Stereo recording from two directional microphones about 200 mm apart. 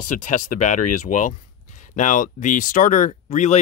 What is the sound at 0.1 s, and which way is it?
Speech, 40° left (ahead or behind).